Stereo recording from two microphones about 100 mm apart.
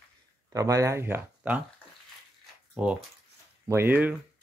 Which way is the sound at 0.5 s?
35° right (ahead or behind).